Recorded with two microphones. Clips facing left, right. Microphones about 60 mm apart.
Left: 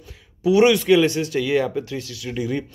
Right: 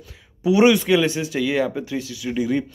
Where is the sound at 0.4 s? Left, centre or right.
Centre.